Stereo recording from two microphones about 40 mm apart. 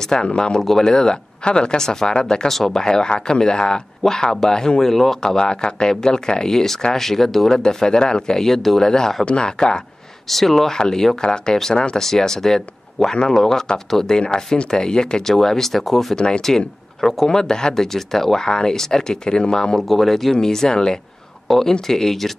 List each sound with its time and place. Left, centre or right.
0.0 s speech: centre
2.5 s speech: centre
2.8 s speech: centre
8.5 s speech: centre
10.2 s speech: centre; by 12.0 s left
12.0 s speech: centre
14.1 s speech: centre
16.2 s speech: centre
19.8 s speech: centre